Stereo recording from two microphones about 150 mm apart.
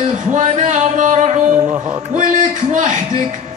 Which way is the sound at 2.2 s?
60° right (ahead or behind).